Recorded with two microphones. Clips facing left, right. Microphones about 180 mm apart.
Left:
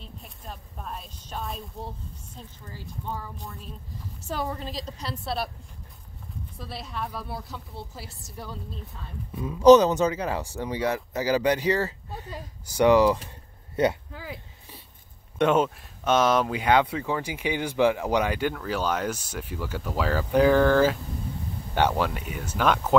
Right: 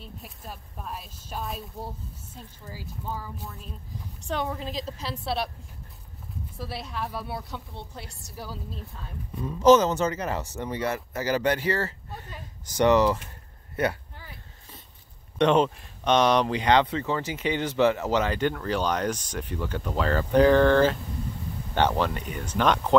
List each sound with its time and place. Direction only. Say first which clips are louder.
0.0 s speech: right 1 dB; 5° right (ahead or behind)
6.6 s speech: right 1 dB; centre (ahead or behind)
9.6 s speech: left 3 dB; 15° left (ahead or behind)
13.8 s speech: left 3 dB; 25° left (ahead or behind)
14.1 s a sound: left 9 dB; 90° left
15.3 s speech: right 1 dB; 5° left (ahead or behind)